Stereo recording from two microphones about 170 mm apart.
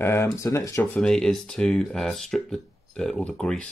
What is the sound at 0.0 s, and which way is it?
Speech, 15° left (ahead or behind).